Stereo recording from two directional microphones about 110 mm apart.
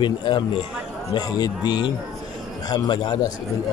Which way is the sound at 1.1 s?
35° left (ahead or behind).